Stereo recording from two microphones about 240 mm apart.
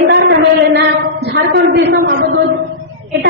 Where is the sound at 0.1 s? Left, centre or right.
Right.